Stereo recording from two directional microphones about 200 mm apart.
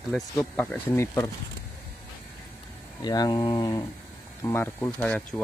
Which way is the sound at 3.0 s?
20° left (ahead or behind).